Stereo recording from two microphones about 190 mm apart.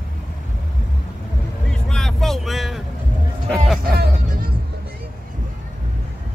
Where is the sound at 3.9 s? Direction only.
50° right (ahead or behind).